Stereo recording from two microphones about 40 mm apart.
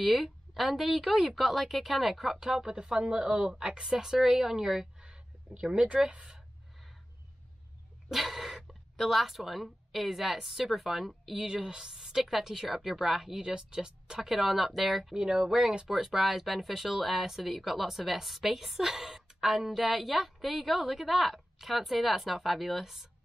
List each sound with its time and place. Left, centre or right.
0.0 s a woman's voice: centre
5.1 s a sound: right
8.1 s a sound: centre
8.6 s speech: centre
11.3 s speech: centre
15.1 s a woman's voice: centre